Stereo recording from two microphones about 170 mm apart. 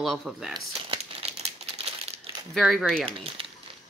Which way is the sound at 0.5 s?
30° right (ahead or behind).